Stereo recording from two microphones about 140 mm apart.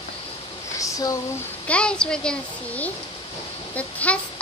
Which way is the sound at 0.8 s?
25° left (ahead or behind).